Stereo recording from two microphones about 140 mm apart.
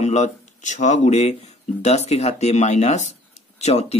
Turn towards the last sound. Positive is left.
turn(degrees=50)  # may be behind; listen again after turning